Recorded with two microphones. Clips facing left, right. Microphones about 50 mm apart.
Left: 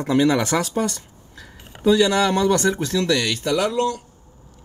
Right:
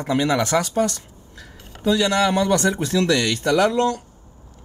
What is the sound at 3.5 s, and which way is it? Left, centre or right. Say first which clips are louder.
Speech: right 3 dB; right.